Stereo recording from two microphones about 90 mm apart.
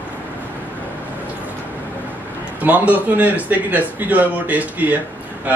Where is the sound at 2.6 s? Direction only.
20° right (ahead or behind).